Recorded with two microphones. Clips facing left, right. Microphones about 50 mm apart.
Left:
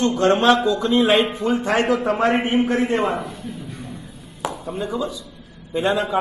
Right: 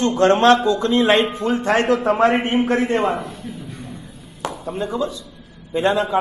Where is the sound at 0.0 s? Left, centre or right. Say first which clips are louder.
Right 2 dB; centre.